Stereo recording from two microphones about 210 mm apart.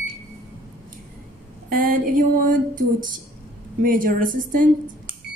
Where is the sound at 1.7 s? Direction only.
40° right (ahead or behind).